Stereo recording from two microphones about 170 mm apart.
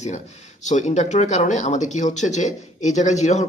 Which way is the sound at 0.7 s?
45° left (ahead or behind).